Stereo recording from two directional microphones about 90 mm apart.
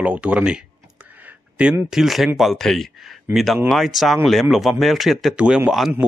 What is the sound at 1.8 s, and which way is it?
Speech, 5° right (ahead or behind).